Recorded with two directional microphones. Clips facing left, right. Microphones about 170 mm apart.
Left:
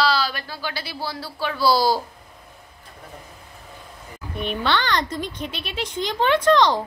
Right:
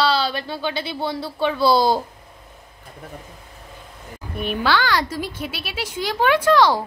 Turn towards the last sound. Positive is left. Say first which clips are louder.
# right 1 dB
turn(degrees=-10)  # may be behind; listen again after turning